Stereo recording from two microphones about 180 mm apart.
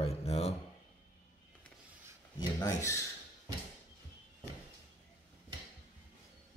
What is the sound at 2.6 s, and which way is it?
Speech, 15° left (ahead or behind).